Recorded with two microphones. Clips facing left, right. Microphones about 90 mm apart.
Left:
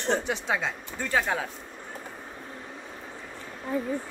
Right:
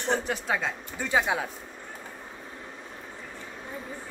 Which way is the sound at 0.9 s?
10° right (ahead or behind).